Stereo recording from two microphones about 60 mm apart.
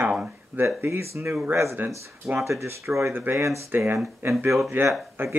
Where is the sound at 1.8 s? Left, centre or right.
Right.